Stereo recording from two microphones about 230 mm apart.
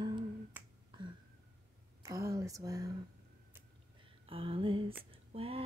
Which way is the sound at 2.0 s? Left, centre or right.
Centre.